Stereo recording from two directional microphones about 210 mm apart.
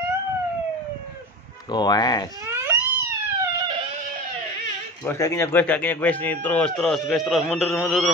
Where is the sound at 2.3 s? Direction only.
15° right (ahead or behind).